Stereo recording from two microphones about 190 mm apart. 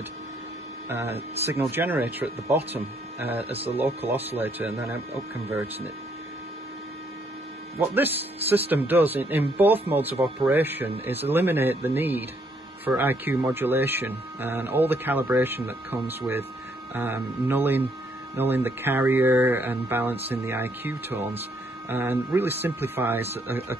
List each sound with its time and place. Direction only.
0.8 s speech: 10° right (ahead or behind)
3.5 s speech: 30° right (ahead or behind)
4.4 s speech: 10° right (ahead or behind)
7.9 s speech: 10° right (ahead or behind)